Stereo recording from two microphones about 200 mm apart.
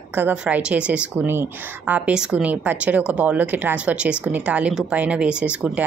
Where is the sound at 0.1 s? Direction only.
10° right (ahead or behind).